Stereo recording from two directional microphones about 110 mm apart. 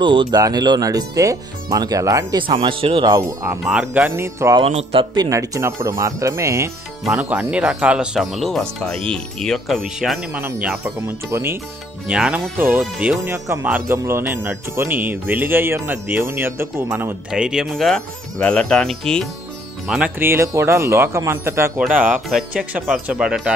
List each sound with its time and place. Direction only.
0.0 s speech: 45° right (ahead or behind); by 2.2 s 30° right (ahead or behind)
2.7 s speech: 55° right (ahead or behind)
3.1 s speech: 35° right (ahead or behind)
3.6 s speech: 5° right (ahead or behind)
4.1 s speech: 25° right (ahead or behind)
4.6 s speech: 60° right (ahead or behind)
5.1 s speech: 35° right (ahead or behind)
7.2 s speech: 15° right (ahead or behind)
10.3 s speech: 15° right (ahead or behind)
12.1 s speech: 10° right (ahead or behind)
13.7 s speech: 15° right (ahead or behind)
17.3 s speech: 5° right (ahead or behind)
20.2 s speech: 25° right (ahead or behind)
21.7 s speech: 10° right (ahead or behind)